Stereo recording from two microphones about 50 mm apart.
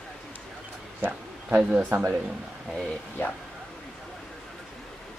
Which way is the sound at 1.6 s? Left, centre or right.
Centre.